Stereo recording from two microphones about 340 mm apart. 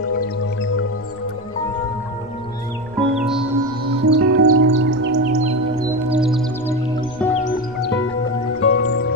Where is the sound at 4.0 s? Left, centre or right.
Right.